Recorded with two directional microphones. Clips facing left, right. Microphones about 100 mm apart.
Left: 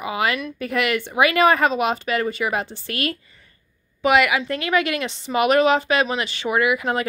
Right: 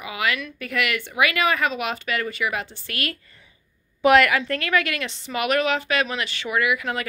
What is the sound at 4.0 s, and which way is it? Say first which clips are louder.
Speech: right 1 dB; 5° left (ahead or behind).